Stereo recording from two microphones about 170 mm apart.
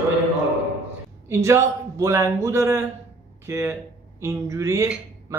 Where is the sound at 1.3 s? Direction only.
15° right (ahead or behind).